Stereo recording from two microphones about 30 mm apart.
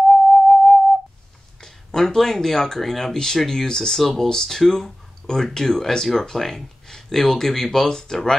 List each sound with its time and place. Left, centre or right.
0.1 s music: centre
1.6 s a sound: centre
2.0 s speech: centre
3.9 s speech: centre